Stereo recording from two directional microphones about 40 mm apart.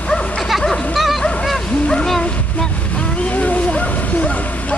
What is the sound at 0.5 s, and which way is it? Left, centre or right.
Music, centre.